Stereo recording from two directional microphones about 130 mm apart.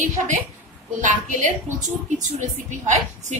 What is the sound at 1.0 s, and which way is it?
Speech, 75° right (ahead or behind).